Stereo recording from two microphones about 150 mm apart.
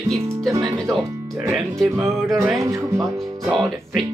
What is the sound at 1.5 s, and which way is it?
Speech, centre (ahead or behind).